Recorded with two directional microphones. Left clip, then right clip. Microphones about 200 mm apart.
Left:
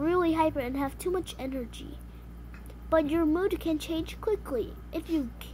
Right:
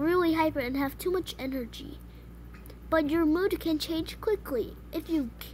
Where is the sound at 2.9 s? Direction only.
25° right (ahead or behind).